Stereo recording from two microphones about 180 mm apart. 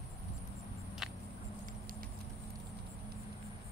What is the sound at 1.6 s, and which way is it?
Patter, 50° right (ahead or behind).